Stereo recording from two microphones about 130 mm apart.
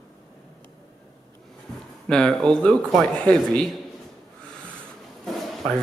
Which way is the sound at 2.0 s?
5° left (ahead or behind).